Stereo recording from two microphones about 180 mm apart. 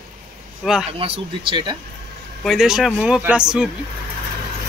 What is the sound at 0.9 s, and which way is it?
Speech, 30° right (ahead or behind).